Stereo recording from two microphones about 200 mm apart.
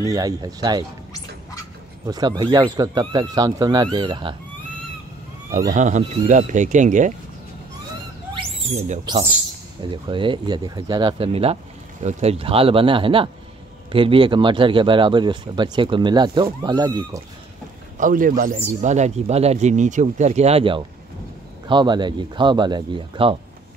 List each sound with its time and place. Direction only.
0.0 s speech: 15° right (ahead or behind)
2.0 s speech: 20° right (ahead or behind)
5.7 s speech: 35° right (ahead or behind)
8.4 s owl: 35° right (ahead or behind)
9.8 s speech: 25° right (ahead or behind)
17.9 s a man's voice: 40° right (ahead or behind); by 23.3 s 25° right (ahead or behind)